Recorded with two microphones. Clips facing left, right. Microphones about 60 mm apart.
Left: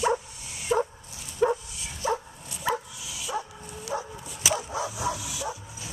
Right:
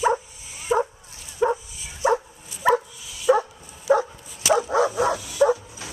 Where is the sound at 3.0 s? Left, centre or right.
Centre.